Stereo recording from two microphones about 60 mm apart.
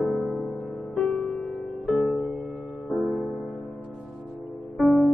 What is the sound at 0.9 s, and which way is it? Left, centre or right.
Music, centre.